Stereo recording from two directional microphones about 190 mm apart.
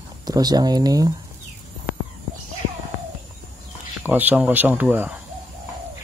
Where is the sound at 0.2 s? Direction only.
20° right (ahead or behind).